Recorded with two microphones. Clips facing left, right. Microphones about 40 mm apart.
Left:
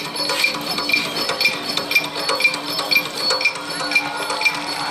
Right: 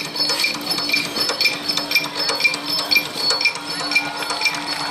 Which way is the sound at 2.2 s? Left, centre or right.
Left.